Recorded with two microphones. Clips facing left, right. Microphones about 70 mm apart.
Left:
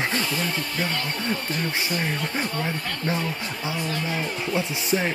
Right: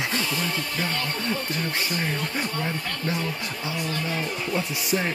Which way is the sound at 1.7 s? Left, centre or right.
Left.